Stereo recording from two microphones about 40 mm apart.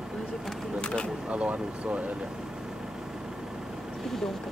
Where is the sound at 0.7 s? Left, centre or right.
Left.